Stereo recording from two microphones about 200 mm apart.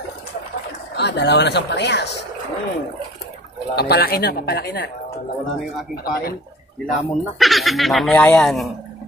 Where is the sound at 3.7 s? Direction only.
50° left (ahead or behind).